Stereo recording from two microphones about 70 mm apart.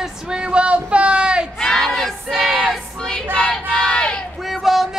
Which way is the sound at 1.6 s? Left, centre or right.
Centre.